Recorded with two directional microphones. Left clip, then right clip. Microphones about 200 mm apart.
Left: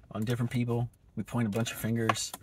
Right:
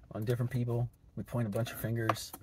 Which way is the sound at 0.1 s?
20° left (ahead or behind).